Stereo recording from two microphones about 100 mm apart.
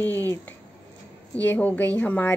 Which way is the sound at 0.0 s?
20° left (ahead or behind).